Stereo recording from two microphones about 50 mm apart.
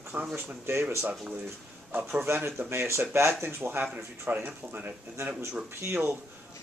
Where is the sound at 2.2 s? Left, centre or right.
Right.